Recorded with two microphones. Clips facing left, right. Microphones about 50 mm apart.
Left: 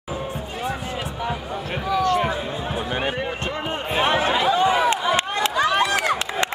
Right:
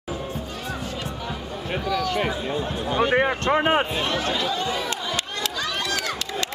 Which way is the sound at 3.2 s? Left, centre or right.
Right.